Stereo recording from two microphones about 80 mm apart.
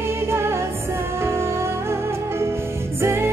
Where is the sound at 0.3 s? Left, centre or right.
Right.